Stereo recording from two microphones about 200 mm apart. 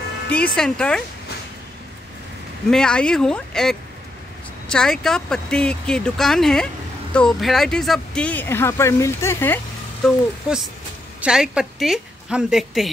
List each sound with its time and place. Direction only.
0.3 s speech: 5° left (ahead or behind)
2.7 s speech: 5° left (ahead or behind)
10.0 s a woman's voice: centre (ahead or behind)